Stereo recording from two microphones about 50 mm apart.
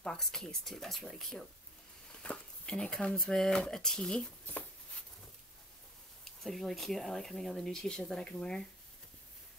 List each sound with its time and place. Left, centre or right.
0.0 s speech: centre
2.2 s speech: left
2.7 s speech: centre
6.2 s speech: centre; by 8.5 s left